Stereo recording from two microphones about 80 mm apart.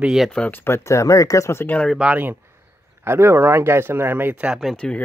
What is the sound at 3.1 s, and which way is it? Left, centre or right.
Speech, right.